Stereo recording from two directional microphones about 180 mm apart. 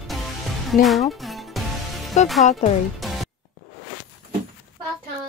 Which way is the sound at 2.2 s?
40° left (ahead or behind).